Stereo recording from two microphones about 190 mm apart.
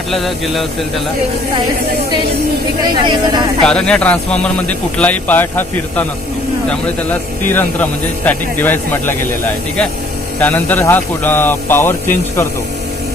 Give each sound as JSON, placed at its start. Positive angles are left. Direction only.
{"t": 0.1, "sound": "speech", "side_deg": 0}
{"t": 2.9, "sound": "speech", "side_deg": -25}
{"t": 3.6, "sound": "speech", "side_deg": 5}
{"t": 7.4, "sound": "speech", "side_deg": 10}
{"t": 10.4, "sound": "speech", "side_deg": 10}